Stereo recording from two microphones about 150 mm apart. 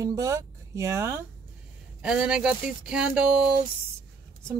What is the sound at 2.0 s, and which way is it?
Speech, 5° right (ahead or behind).